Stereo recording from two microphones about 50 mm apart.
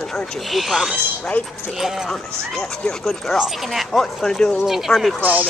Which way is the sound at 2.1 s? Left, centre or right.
Centre.